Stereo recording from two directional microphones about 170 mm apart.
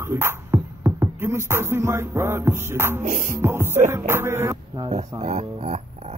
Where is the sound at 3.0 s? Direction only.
50° right (ahead or behind).